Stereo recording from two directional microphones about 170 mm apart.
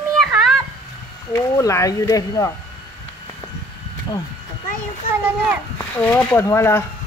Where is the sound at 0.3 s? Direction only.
Centre (ahead or behind).